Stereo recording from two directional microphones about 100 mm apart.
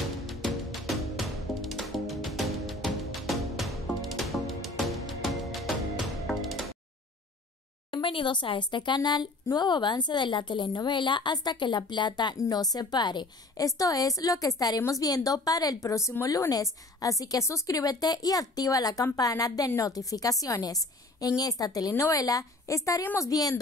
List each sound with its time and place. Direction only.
0.3 s music: centre (ahead or behind)
7.9 s a woman's voice: 60° left (ahead or behind)
13.7 s a woman's voice: 35° left (ahead or behind)